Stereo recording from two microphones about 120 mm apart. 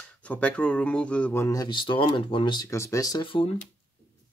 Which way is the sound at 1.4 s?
30° left (ahead or behind).